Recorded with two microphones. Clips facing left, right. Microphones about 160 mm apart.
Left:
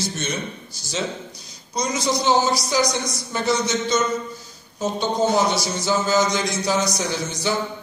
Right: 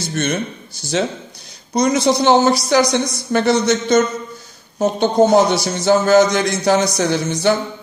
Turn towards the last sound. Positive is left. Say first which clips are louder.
# right 8 dB
turn(degrees=-60)  # may be behind; listen again after turning